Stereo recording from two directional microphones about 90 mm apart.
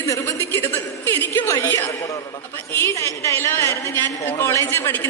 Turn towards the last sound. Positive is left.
turn(degrees=30)  # may be behind; listen again after turning